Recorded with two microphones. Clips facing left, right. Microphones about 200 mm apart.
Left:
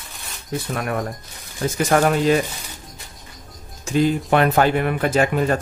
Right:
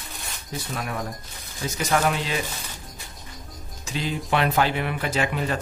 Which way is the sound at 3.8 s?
50° left (ahead or behind).